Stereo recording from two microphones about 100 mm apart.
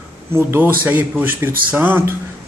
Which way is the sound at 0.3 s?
20° right (ahead or behind).